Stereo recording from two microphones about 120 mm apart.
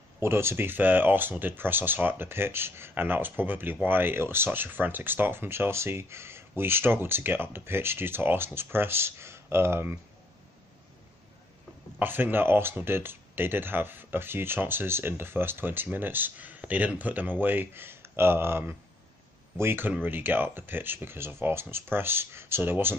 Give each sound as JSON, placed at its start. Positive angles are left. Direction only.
{"t": 0.2, "sound": "speech", "side_deg": -20}
{"t": 12.0, "sound": "speech", "side_deg": -15}